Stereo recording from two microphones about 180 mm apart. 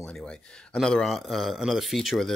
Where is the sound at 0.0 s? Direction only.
5° left (ahead or behind).